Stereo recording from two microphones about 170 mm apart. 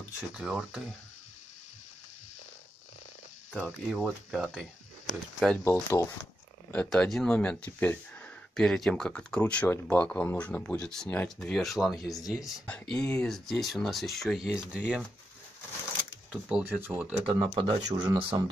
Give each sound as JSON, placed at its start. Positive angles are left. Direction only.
{"t": 0.4, "sound": "speech", "side_deg": -5}
{"t": 3.5, "sound": "speech", "side_deg": 0}
{"t": 5.6, "sound": "speech", "side_deg": 15}
{"t": 16.3, "sound": "speech", "side_deg": -5}
{"t": 17.3, "sound": "speech", "side_deg": -30}